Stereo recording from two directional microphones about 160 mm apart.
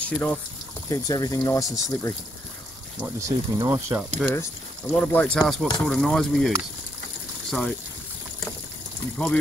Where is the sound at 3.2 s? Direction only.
15° right (ahead or behind).